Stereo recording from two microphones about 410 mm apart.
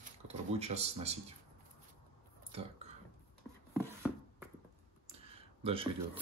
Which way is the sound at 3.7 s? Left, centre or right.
Centre.